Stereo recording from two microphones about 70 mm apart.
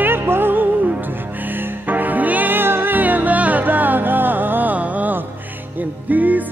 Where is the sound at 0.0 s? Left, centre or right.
Right.